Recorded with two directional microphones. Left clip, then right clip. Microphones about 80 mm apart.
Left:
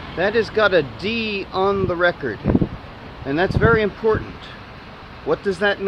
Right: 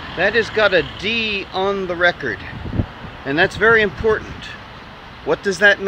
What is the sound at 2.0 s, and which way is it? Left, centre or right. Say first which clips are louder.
Speech: right 2 dB; left.